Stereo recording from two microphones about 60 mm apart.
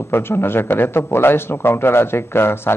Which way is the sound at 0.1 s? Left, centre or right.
Left.